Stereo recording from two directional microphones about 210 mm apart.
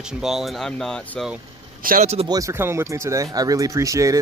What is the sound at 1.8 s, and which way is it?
Speech, 40° right (ahead or behind).